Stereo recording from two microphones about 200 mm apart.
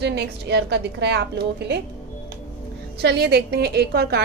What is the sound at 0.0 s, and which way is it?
A woman's voice, 55° right (ahead or behind).